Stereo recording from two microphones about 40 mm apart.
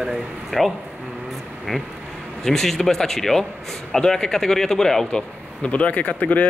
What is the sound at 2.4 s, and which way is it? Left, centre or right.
Speech, centre.